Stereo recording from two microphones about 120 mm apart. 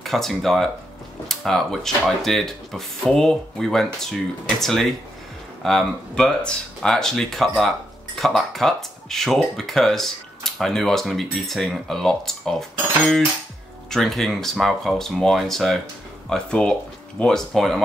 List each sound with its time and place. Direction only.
0.0 s speech: centre (ahead or behind)